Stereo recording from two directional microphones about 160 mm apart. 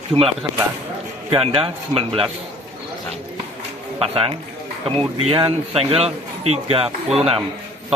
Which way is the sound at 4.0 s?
35° right (ahead or behind).